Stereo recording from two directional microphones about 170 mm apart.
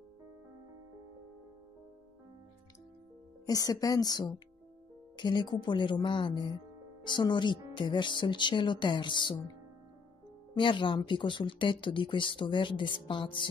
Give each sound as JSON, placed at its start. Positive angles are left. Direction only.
{"t": 3.4, "sound": "speech", "side_deg": 20}
{"t": 10.5, "sound": "speech", "side_deg": 30}